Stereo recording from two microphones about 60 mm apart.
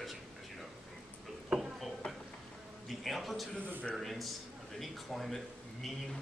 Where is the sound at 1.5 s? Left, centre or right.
Right.